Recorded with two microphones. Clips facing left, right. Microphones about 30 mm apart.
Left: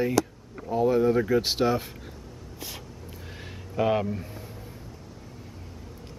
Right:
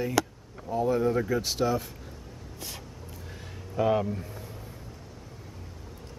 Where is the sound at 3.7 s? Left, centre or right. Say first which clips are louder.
Left 1 dB; left.